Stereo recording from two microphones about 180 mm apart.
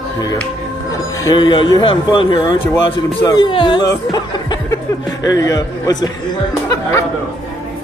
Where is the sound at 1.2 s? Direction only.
25° left (ahead or behind).